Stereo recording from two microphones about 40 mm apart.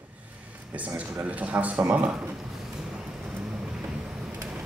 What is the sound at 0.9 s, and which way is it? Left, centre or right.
A man's voice, right.